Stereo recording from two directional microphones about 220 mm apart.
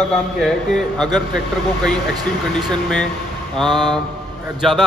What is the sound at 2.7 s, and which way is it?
Speech, 5° left (ahead or behind).